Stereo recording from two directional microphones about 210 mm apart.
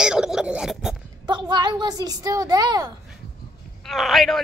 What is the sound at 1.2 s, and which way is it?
Child singing, 20° right (ahead or behind).